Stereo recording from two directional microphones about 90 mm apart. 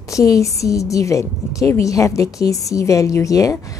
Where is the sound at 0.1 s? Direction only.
35° left (ahead or behind).